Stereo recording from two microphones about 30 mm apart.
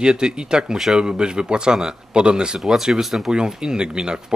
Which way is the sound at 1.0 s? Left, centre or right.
Right.